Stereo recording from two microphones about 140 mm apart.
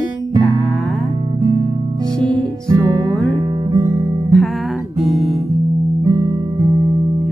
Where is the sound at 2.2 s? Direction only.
30° right (ahead or behind).